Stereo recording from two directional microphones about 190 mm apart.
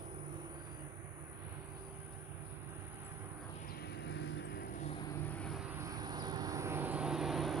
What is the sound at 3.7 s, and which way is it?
Vehicle, 60° left (ahead or behind).